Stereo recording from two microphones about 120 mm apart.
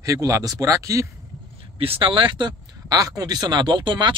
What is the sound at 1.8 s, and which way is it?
Speech, 50° right (ahead or behind).